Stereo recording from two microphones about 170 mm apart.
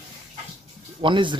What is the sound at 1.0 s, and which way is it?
Speech, 30° right (ahead or behind).